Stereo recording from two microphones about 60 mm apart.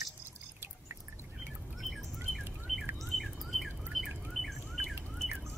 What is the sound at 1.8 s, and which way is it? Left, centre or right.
Bird, centre.